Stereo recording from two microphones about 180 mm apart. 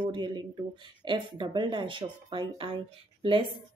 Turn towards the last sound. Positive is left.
turn(degrees=-30)  # may be behind; listen again after turning